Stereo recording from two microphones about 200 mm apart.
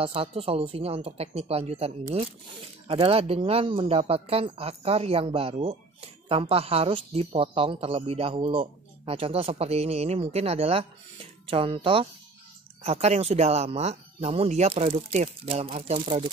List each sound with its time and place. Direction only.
0.0 s speech: 30° right (ahead or behind)
2.9 s speech: 30° right (ahead or behind)